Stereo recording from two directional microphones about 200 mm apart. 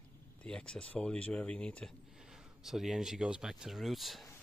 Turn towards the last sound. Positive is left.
turn(degrees=0)  # may be behind; listen again after turning